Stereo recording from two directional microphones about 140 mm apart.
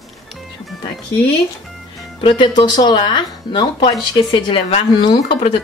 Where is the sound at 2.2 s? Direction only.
35° left (ahead or behind).